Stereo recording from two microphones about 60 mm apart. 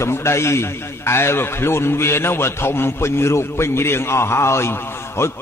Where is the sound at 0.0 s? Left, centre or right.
Left.